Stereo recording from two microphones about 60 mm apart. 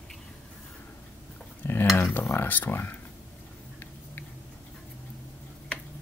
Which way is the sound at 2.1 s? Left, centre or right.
Left.